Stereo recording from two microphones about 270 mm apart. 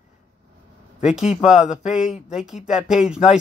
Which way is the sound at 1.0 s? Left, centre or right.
Centre.